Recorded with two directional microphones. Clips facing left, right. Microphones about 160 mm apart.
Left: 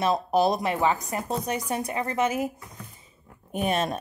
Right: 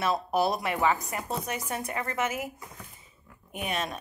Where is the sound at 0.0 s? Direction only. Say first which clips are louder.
Left 4 dB; 20° left (ahead or behind).